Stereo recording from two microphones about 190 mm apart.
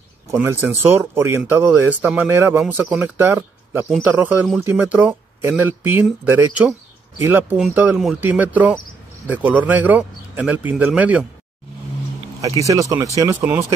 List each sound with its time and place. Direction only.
0.3 s speech: 10° right (ahead or behind)
12.6 s speech: 15° right (ahead or behind)